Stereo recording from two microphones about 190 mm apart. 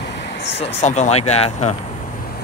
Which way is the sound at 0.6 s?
35° left (ahead or behind).